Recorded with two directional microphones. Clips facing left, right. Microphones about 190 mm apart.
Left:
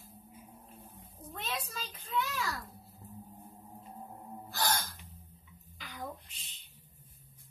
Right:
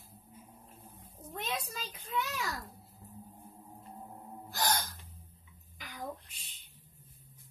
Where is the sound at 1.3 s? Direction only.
15° right (ahead or behind).